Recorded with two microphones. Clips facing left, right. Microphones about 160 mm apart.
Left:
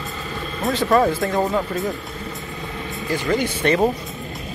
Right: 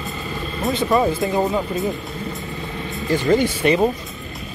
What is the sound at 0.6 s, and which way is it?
Speech, centre (ahead or behind).